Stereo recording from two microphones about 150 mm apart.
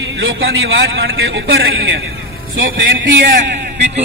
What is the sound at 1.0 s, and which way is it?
Speech, 90° right.